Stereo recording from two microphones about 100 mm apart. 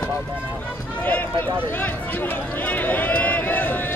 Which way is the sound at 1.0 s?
15° left (ahead or behind).